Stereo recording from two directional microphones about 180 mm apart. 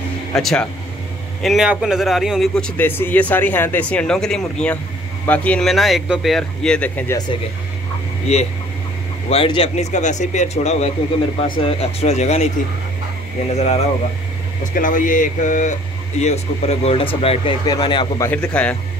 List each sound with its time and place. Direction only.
0.3 s a man's voice: 5° left (ahead or behind)
8.3 s speech: 35° left (ahead or behind)
13.5 s speech: 35° left (ahead or behind)
14.6 s speech: 50° left (ahead or behind); by 18.3 s 25° left (ahead or behind)
18.3 s a man's voice: 5° left (ahead or behind)